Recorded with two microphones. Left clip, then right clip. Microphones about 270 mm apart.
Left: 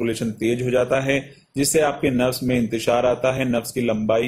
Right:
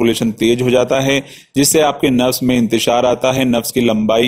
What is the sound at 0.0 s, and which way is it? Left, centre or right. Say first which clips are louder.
A man's voice: right 9 dB; right.